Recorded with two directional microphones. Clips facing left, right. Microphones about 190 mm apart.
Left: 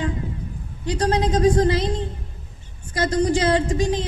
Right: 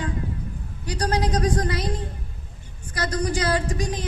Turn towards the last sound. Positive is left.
turn(degrees=25)  # may be behind; listen again after turning